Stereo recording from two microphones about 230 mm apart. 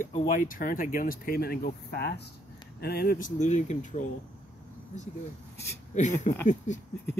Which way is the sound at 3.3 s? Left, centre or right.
Left.